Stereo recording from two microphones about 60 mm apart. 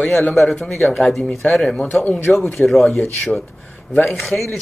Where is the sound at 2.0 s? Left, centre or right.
Left.